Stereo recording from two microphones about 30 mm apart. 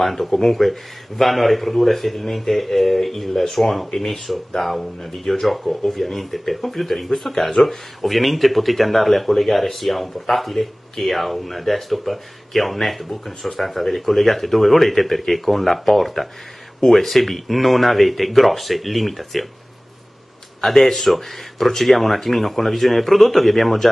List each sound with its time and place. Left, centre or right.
0.0 s speech: centre
3.9 s speech: centre
20.6 s speech: centre